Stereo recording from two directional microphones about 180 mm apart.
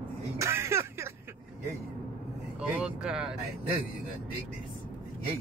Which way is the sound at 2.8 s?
5° right (ahead or behind).